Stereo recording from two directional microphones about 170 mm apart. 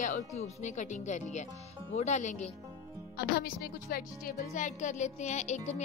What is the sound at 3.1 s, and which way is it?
Speech, 70° left (ahead or behind).